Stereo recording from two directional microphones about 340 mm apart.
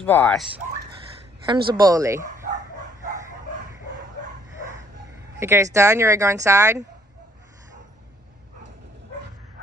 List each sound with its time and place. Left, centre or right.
0.0 s speech: centre
1.4 s speech: centre
5.4 s speech: centre